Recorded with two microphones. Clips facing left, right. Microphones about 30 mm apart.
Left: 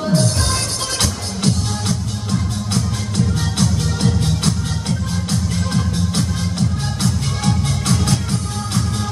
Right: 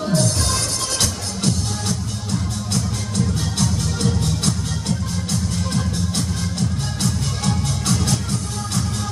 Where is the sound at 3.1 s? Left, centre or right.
Left.